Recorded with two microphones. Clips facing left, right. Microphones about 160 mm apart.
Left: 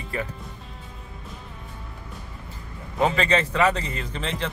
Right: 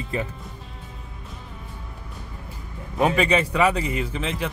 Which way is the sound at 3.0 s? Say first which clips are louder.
Right 2 dB; 10° right (ahead or behind).